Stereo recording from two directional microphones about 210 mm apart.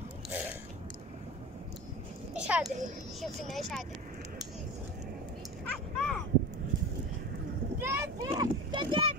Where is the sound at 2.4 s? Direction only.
5° right (ahead or behind).